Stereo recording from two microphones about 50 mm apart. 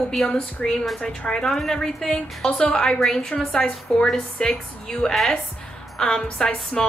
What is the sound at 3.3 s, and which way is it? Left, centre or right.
A woman's voice, left.